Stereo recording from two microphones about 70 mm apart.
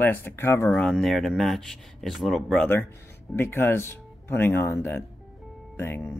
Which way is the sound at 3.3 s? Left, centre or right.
Left.